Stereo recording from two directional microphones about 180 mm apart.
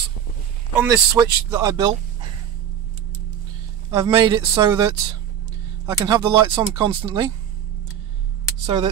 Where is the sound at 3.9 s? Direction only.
20° right (ahead or behind).